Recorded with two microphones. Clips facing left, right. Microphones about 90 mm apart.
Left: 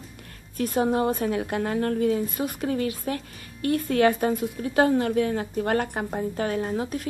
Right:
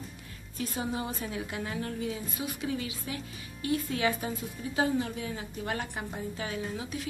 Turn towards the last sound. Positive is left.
turn(degrees=50)  # may be behind; listen again after turning